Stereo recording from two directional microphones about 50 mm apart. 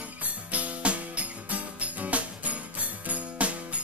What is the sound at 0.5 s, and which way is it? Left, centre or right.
Music, right.